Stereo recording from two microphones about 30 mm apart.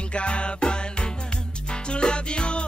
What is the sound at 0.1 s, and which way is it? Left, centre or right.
Music, left.